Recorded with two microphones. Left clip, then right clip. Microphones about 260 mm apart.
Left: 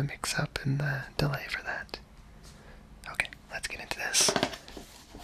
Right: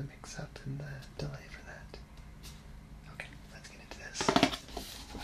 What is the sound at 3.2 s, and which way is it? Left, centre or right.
Whispering, left.